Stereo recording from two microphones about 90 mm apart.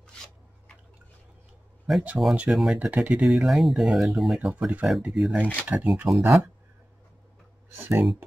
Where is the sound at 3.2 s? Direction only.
Centre (ahead or behind).